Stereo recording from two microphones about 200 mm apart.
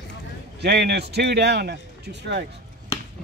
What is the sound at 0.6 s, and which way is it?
Speech, 55° right (ahead or behind).